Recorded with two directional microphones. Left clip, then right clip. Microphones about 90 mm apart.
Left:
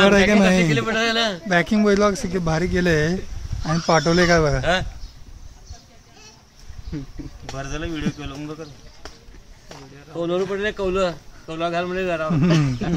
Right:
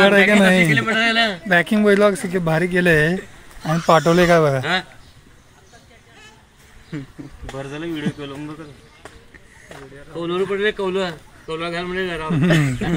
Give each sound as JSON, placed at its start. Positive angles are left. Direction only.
{"t": 0.0, "sound": "speech", "side_deg": -5}
{"t": 0.7, "sound": "speech", "side_deg": 45}
{"t": 1.5, "sound": "speech", "side_deg": -5}
{"t": 6.9, "sound": "speech", "side_deg": -25}
{"t": 7.5, "sound": "speech", "side_deg": 90}
{"t": 10.1, "sound": "speech", "side_deg": 60}
{"t": 11.5, "sound": "speech", "side_deg": 45}